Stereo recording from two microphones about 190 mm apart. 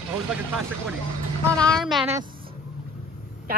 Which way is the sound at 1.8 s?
Centre (ahead or behind).